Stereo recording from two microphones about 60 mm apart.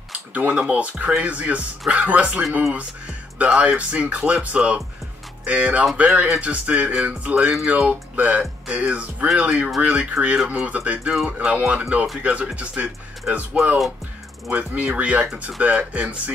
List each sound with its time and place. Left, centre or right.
0.1 s speech: right